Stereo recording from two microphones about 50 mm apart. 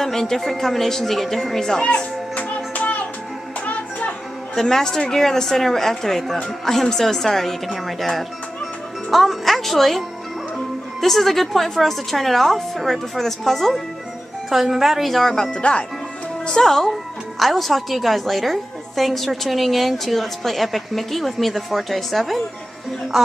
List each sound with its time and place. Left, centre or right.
0.0 s speech: centre
1.9 s music: left
4.6 s a woman's voice: centre